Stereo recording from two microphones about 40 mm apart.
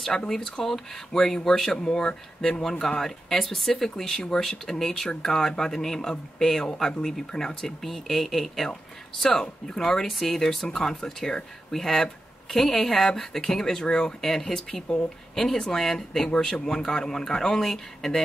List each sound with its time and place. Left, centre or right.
0.1 s speech: centre
3.9 s speech: centre
9.3 s speech: centre